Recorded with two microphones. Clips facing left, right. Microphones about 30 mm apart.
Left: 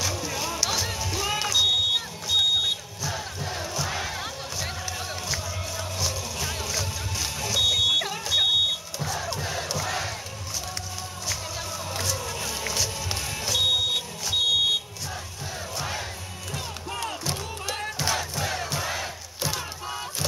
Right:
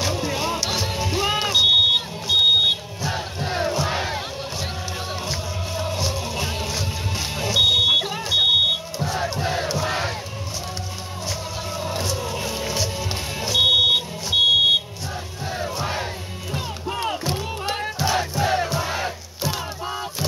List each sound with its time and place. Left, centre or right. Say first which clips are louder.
0.0 s music: right 5 dB; right
8.0 s smoke detector: right 4 dB; right
9.0 s crowd: right 5 dB; right
11.8 s music: right 5 dB; right
13.7 s smoke detector: right 7 dB; right
15.5 s crowd: right 6 dB; right
17.7 s music: right 3 dB; centre
18.3 s crowd: right 8 dB; right
18.7 s crowd: right 4 dB; centre
19.5 s a sound: right 4 dB; centre